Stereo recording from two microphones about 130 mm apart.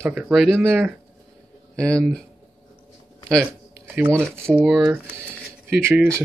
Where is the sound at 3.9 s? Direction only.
20° right (ahead or behind).